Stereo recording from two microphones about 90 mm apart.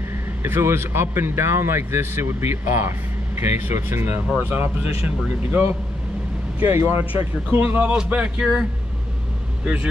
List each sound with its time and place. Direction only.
0.4 s speech: 30° right (ahead or behind)
6.7 s speech: 25° right (ahead or behind); by 8.6 s 10° right (ahead or behind)